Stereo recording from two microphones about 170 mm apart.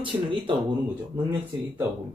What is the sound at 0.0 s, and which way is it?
Speech, 30° right (ahead or behind).